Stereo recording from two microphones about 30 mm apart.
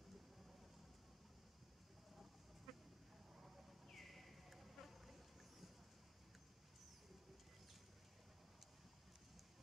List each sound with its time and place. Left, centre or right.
2.7 s goat: centre
3.9 s insect: centre